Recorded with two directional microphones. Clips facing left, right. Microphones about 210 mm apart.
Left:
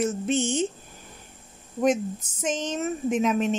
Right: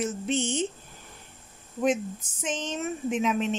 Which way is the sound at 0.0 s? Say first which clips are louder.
Left 3 dB; 45° left (ahead or behind).